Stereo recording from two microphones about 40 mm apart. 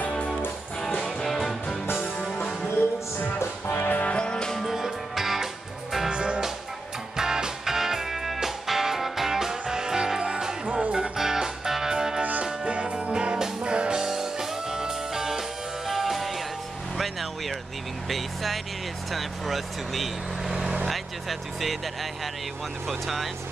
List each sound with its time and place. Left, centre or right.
0.9 s music: centre
3.8 s music: left
4.1 s music: left
4.6 s music: centre
6.0 s music: right
11.1 s music: centre
12.6 s music: right
14.0 s music: centre
18.0 s vehicle: centre
19.1 s speech: centre
20.4 s speech: centre
20.9 s speech: centre
22.8 s speech: centre